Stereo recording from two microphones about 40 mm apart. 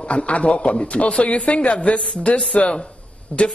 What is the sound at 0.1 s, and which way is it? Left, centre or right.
A man's voice, left.